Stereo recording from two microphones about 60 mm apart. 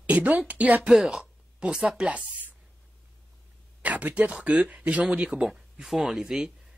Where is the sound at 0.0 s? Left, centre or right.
Right.